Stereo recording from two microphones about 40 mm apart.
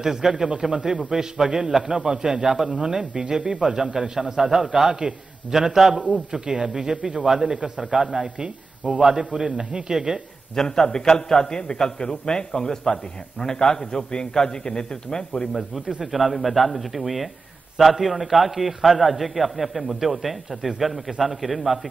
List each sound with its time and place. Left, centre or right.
0.0 s a man's voice: centre
10.5 s a man's voice: centre
16.0 s a man's voice: centre